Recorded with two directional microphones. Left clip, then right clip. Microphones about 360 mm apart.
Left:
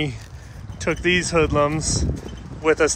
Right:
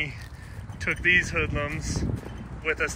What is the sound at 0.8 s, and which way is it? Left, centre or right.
Speech, centre.